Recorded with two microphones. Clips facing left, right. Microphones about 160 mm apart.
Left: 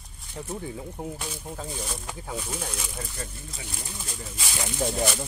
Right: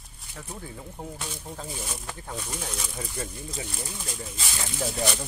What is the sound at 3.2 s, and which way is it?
Speech, 10° right (ahead or behind).